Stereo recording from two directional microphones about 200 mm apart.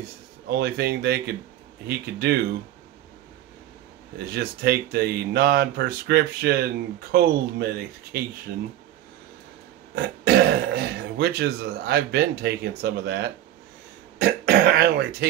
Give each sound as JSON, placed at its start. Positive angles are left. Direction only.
{"t": 0.5, "sound": "speech", "side_deg": -55}
{"t": 4.3, "sound": "speech", "side_deg": -50}
{"t": 9.9, "sound": "speech", "side_deg": -50}